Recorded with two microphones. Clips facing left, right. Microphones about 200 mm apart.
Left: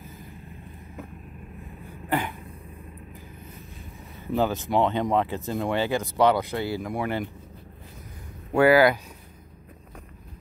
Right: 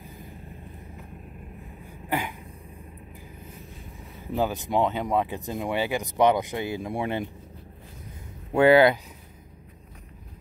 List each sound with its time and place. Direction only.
2.0 s cough: 15° right (ahead or behind)
4.4 s speech: 15° right (ahead or behind)
8.5 s speech: 25° right (ahead or behind)